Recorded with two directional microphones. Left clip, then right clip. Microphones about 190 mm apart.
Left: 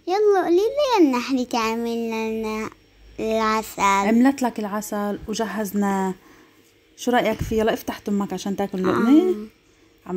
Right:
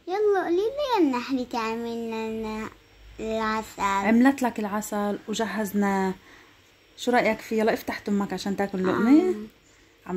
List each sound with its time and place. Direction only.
0.0 s a child's voice: 40° left (ahead or behind)
3.2 s a sound: 35° left (ahead or behind)
4.0 s a woman's voice: 15° left (ahead or behind)